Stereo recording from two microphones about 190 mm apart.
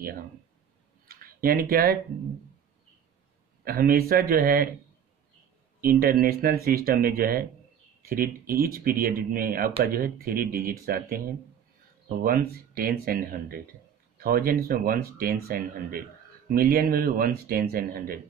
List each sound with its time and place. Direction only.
1.0 s a sound: 50° right (ahead or behind)
3.6 s speech: 50° right (ahead or behind)
5.8 s speech: 50° right (ahead or behind)